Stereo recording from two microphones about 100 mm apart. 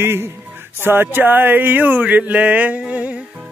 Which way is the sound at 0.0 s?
25° right (ahead or behind).